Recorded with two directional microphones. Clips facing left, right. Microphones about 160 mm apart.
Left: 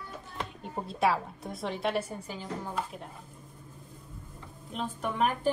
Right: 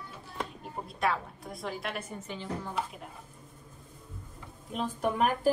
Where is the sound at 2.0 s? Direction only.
35° left (ahead or behind).